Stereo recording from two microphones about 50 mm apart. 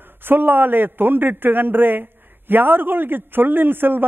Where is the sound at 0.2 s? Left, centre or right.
Right.